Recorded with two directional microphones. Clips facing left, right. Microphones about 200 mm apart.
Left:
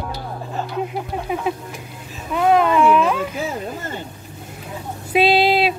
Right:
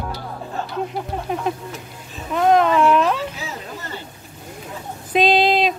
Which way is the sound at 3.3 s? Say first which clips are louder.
Left 6 dB; 50° left (ahead or behind).